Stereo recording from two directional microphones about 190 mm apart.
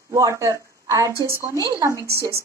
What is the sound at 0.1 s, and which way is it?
Speech, 15° right (ahead or behind).